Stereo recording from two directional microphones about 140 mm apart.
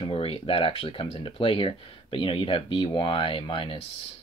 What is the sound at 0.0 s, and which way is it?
Speech, 40° left (ahead or behind).